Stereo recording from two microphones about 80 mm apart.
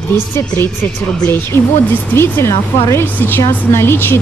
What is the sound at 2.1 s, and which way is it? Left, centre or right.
A woman's voice, left.